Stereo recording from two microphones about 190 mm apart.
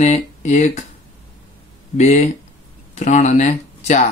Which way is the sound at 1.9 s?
35° left (ahead or behind).